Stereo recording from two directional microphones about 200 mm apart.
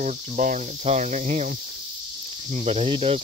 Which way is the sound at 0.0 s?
40° right (ahead or behind).